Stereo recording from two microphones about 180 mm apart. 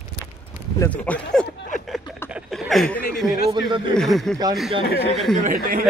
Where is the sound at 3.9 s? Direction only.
Centre (ahead or behind).